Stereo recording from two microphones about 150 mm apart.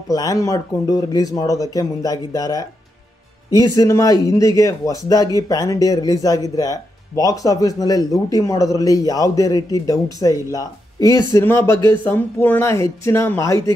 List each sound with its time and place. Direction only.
0.1 s a man's voice: 25° left (ahead or behind)